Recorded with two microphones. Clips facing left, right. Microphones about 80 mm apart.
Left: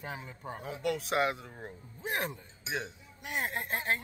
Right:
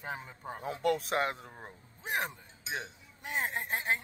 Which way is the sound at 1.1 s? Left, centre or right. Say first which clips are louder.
Left 2 dB; right.